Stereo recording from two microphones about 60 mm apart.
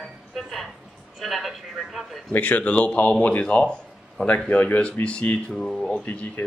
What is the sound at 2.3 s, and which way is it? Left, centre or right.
Speech, left.